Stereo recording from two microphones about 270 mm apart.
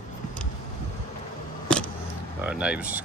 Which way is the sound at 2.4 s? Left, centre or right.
Centre.